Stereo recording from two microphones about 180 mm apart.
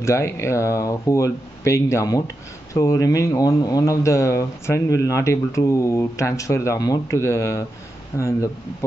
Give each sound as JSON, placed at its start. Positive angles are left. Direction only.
{"t": 0.0, "sound": "speech", "side_deg": 15}